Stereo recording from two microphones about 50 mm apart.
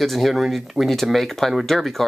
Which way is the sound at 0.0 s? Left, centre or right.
Centre.